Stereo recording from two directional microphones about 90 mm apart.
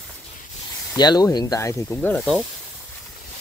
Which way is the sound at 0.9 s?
50° left (ahead or behind).